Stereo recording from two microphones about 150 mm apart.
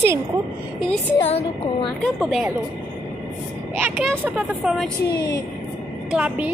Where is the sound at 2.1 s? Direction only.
Centre (ahead or behind).